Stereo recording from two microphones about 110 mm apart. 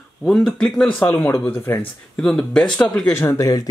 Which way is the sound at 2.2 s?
5° left (ahead or behind).